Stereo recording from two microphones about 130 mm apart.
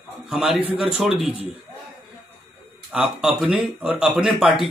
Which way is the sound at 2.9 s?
5° right (ahead or behind).